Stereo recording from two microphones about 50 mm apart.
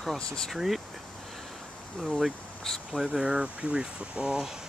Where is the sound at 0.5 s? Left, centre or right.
Centre.